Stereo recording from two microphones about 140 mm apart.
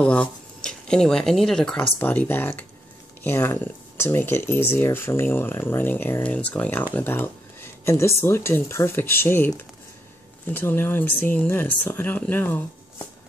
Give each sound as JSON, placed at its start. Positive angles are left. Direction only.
{"t": 0.0, "sound": "speech", "side_deg": 10}